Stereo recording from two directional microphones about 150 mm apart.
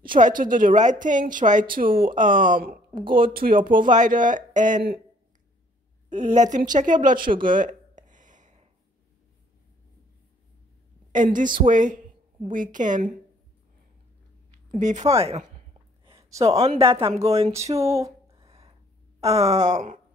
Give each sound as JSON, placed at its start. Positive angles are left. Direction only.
{"t": 0.2, "sound": "a woman's voice", "side_deg": -65}
{"t": 6.0, "sound": "a woman's voice", "side_deg": -50}
{"t": 7.4, "sound": "a sound", "side_deg": -60}
{"t": 11.1, "sound": "a woman's voice", "side_deg": -60}
{"t": 14.8, "sound": "groan", "side_deg": -50}
{"t": 16.2, "sound": "a sound", "side_deg": -20}
{"t": 16.5, "sound": "speech", "side_deg": -45}
{"t": 17.1, "sound": "groan", "side_deg": -45}
{"t": 17.5, "sound": "music", "side_deg": -20}
{"t": 18.4, "sound": "a sound", "side_deg": -40}
{"t": 19.1, "sound": "groan", "side_deg": -45}